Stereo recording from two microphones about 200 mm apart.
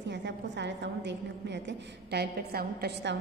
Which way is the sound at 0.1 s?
60° right (ahead or behind).